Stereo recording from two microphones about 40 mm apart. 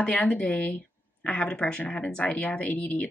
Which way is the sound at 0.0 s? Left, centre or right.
Left.